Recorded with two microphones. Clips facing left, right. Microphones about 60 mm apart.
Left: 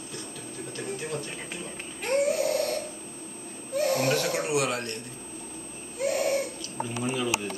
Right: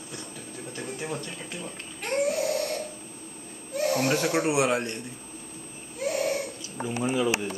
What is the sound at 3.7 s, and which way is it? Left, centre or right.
Baby cry, centre.